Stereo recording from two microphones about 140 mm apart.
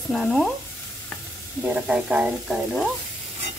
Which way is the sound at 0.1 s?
Centre (ahead or behind).